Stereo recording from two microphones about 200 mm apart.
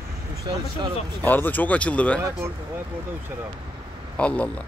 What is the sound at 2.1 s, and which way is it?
Speech, 15° right (ahead or behind).